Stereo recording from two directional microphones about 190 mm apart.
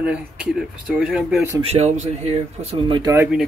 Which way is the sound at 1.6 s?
35° right (ahead or behind).